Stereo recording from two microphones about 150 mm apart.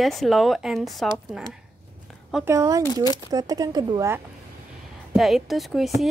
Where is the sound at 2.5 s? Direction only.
20° right (ahead or behind).